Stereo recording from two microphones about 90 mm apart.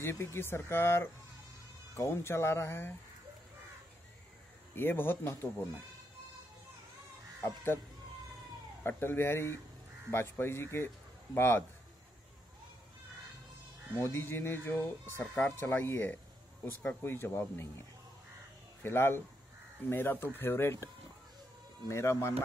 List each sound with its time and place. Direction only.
0.0 s speech: 30° left (ahead or behind)
4.7 s speech: 25° left (ahead or behind)
8.8 s speech: 25° left (ahead or behind)
13.9 s speech: 25° left (ahead or behind)
18.8 s speech: 25° left (ahead or behind)
21.8 s speech: 30° left (ahead or behind)